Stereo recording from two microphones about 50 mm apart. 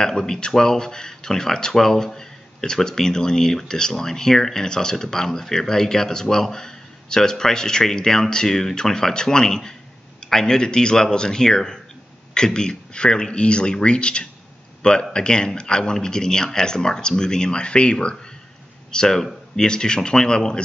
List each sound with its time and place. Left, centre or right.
0.0 s speech: centre